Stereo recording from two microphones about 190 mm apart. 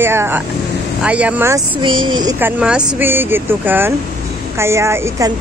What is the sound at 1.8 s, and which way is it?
Speech, 25° right (ahead or behind).